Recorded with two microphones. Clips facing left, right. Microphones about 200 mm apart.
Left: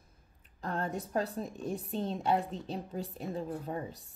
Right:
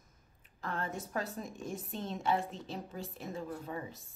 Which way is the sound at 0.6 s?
40° left (ahead or behind).